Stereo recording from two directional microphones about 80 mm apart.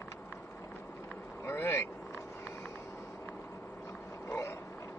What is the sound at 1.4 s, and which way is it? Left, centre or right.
Vehicle, left.